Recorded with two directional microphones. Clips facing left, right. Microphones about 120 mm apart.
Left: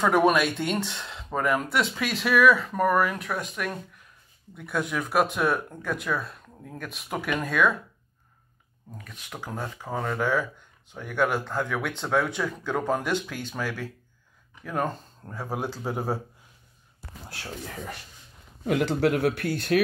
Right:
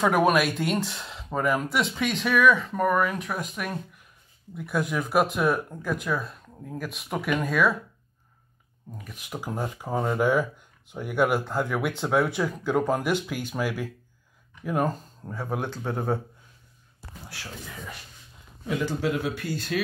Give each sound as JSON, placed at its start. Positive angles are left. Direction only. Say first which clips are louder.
{"t": 0.0, "sound": "speech", "louder": "even", "side_deg": -5}
{"t": 8.9, "sound": "speech", "louder": "right 3 dB", "side_deg": -10}
{"t": 18.7, "sound": "speech", "louder": "left 4 dB", "side_deg": 65}